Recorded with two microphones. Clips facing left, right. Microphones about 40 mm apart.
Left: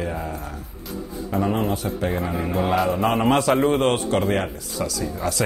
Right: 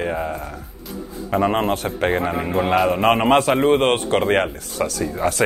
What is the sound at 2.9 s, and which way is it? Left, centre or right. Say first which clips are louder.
A man's voice: right 4 dB; right.